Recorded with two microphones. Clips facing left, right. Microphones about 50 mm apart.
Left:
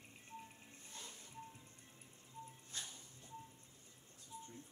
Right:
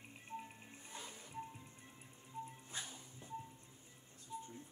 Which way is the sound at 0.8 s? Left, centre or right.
Centre.